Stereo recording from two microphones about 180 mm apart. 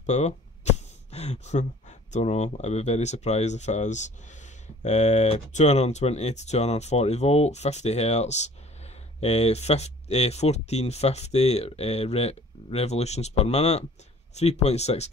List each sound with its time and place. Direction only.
0.0 s speech: 40° left (ahead or behind)